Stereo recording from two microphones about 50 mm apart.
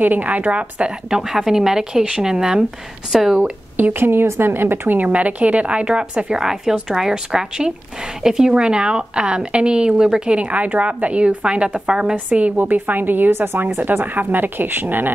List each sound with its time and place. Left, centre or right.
0.0 s a woman's voice: right
1.2 s speech: centre
3.1 s speech: centre
3.3 s speech: right
4.0 s a woman's voice: right; by 12.2 s centre
12.3 s a woman's voice: right